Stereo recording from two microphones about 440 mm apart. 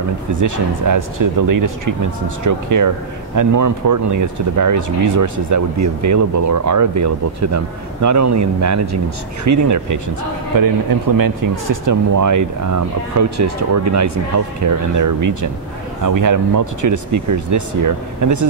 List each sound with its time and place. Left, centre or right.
0.3 s speech: right